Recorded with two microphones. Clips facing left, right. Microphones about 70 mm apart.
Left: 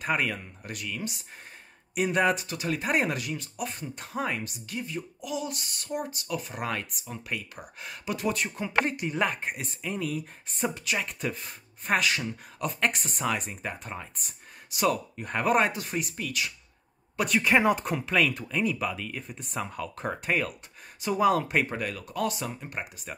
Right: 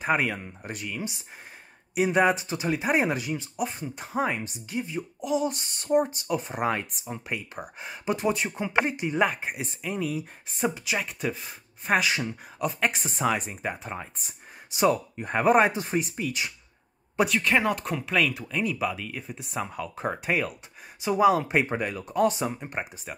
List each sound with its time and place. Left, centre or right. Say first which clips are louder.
0.0 s speech: right 3 dB; centre
0.4 s speech: right 3 dB; right
5.2 s speech: right 9 dB; right
8.5 s speech: right 2 dB; centre
12.0 s speech: right 1 dB; centre
12.5 s speech: right 2 dB; centre
12.9 s speech: right 2 dB; right
13.5 s speech: right 3 dB; centre
17.3 s speech: left 5 dB; centre
21.6 s speech: right 3 dB; centre